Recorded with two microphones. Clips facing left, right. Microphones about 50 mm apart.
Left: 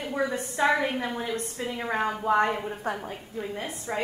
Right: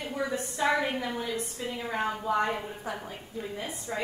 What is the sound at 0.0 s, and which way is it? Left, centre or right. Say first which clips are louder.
A woman's voice: left 3 dB; left.